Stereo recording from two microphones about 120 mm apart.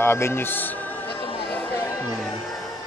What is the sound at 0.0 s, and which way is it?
Speech, 20° left (ahead or behind).